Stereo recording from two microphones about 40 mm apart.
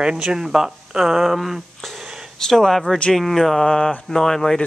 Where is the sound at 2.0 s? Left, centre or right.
Centre.